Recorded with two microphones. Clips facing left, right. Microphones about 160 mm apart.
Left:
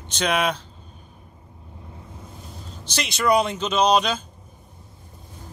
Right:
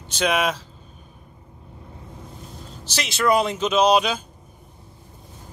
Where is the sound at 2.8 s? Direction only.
5° right (ahead or behind).